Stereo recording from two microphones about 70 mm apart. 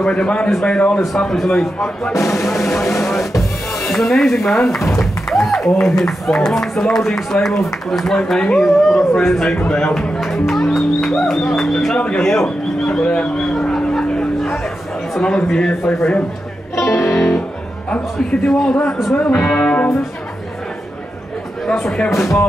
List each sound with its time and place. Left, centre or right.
0.0 s speech: centre
1.2 s speech: centre
2.1 s speech: left
2.4 s speech: centre
13.4 s music: centre
15.1 s speech: centre
16.0 s a man's voice: centre
16.7 s music: left
17.8 s speech: centre
18.5 s speech: centre
19.1 s speech: centre
21.6 s speech: centre
22.1 s speech: left